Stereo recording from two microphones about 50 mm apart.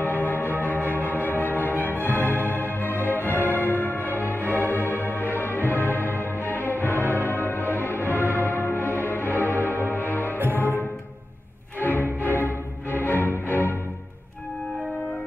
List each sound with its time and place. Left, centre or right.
0.0 s music: left
11.8 s music: left